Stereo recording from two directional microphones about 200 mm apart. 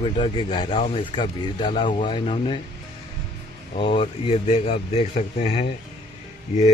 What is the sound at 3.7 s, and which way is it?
Speech, 30° left (ahead or behind).